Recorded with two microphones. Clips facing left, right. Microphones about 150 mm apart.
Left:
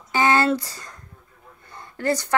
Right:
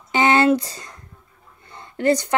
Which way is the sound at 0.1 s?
20° right (ahead or behind).